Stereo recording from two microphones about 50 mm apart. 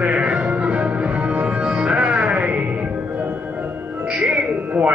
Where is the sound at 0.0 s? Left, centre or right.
Right.